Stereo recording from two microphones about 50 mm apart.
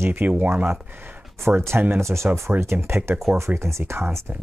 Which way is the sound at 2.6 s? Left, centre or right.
Right.